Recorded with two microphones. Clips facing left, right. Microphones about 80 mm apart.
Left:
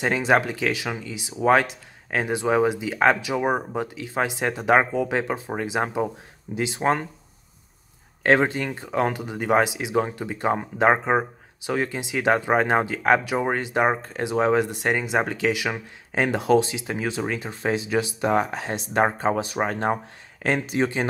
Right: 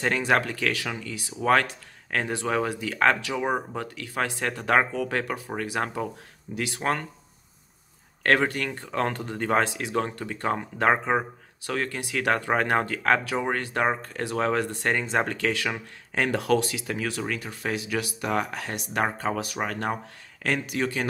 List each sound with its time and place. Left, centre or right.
0.0 s speech: centre
8.2 s speech: left